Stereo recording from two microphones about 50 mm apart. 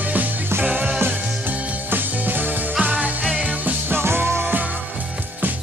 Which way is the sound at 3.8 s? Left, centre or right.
Right.